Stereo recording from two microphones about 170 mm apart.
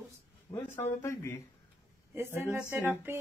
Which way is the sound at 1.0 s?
15° left (ahead or behind).